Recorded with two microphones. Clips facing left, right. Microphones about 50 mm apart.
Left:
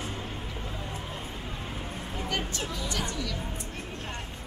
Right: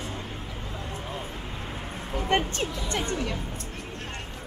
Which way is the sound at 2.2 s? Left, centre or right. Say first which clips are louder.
Right 8 dB; right.